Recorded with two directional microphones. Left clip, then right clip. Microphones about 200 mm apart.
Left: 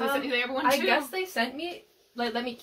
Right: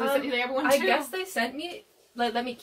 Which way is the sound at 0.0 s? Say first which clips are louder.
Right 1 dB; 5° left (ahead or behind).